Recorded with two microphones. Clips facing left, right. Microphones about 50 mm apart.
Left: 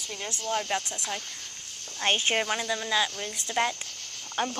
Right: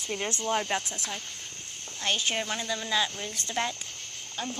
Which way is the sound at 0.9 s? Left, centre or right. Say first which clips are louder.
Left 2 dB; centre.